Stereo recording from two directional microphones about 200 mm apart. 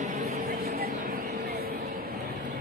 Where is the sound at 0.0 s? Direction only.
40° right (ahead or behind).